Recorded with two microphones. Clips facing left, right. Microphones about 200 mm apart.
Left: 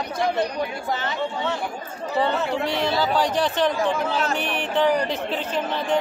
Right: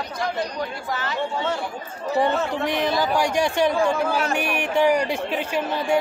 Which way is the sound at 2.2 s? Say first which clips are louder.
Even; 15° right (ahead or behind).